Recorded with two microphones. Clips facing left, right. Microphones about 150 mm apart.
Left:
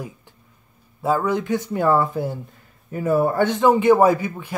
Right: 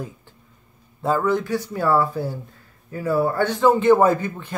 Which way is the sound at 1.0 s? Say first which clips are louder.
Even; 10° left (ahead or behind).